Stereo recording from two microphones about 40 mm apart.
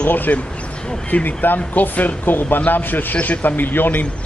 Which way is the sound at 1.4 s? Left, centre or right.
Left.